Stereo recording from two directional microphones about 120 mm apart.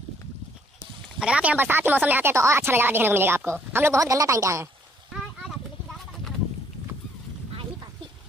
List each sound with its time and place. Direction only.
1.2 s a woman's voice: 10° right (ahead or behind)